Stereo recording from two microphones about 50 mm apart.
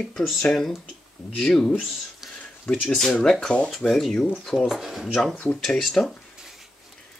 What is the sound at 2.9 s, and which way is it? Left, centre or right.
Speech, centre.